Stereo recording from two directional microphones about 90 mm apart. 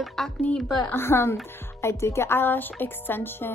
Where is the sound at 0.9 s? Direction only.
25° left (ahead or behind).